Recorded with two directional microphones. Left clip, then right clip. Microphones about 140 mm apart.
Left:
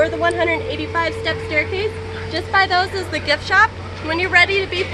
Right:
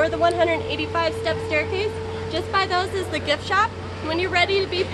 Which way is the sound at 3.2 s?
25° right (ahead or behind).